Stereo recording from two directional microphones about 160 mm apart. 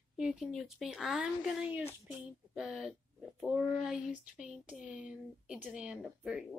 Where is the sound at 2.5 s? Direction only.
Centre (ahead or behind).